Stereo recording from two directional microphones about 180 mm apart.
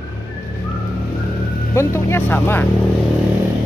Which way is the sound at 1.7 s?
15° left (ahead or behind).